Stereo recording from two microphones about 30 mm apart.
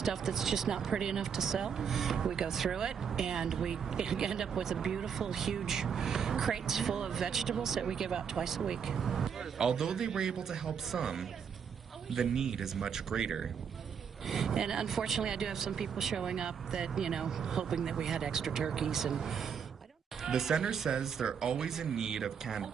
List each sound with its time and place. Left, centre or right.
0.0 s speech: centre
9.6 s a man's voice: right
12.8 s a man's voice: right
14.9 s speech: centre
15.2 s a man's voice: centre